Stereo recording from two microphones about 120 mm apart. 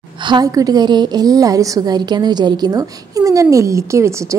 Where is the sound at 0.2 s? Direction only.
35° right (ahead or behind).